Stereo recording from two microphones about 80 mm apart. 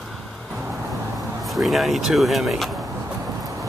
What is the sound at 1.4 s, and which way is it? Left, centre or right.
Speech, centre.